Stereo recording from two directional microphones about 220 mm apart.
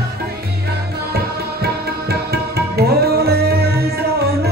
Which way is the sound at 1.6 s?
45° right (ahead or behind).